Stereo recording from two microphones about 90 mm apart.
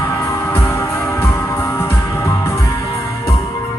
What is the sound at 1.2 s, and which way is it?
Music, 25° left (ahead or behind).